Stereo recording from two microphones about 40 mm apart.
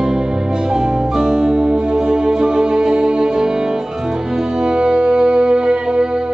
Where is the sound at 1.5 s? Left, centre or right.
Right.